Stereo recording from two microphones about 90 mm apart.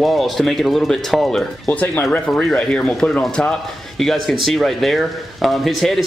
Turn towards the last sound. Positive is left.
turn(degrees=0)  # may be behind; listen again after turning